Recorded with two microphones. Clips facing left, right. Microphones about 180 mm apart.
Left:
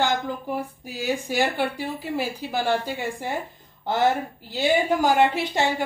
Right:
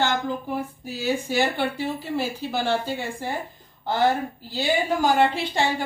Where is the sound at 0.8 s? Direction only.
15° left (ahead or behind).